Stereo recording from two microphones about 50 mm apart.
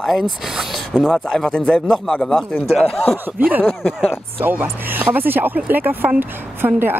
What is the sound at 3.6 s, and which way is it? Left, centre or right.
Speech, centre.